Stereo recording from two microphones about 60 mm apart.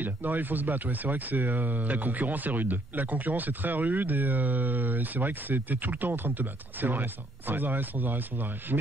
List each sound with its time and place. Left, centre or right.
0.0 s speech: right